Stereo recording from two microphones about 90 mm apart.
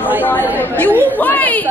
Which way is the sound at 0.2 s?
20° left (ahead or behind).